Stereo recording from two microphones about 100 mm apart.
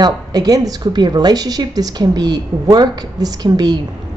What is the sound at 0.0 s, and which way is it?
A woman's voice, 40° right (ahead or behind).